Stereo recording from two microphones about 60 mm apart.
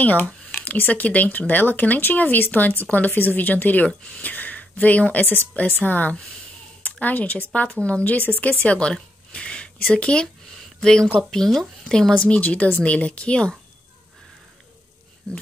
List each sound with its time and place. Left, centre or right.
0.0 s speech: left
10.2 s a sound: centre
11.1 s speech: centre
12.2 s speech: left